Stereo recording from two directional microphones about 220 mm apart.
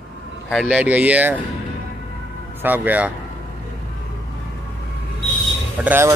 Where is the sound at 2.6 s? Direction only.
10° right (ahead or behind).